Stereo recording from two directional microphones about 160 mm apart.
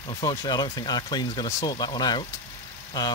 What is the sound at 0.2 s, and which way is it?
Speech, 25° left (ahead or behind).